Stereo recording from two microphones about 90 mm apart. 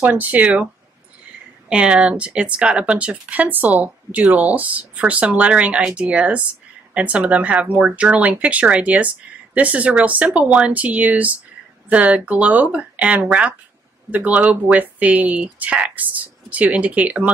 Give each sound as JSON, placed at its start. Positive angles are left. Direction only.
{"t": 0.0, "sound": "speech", "side_deg": -20}
{"t": 1.7, "sound": "speech", "side_deg": -10}